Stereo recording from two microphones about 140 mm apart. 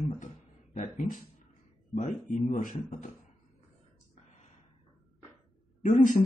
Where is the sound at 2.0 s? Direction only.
55° left (ahead or behind).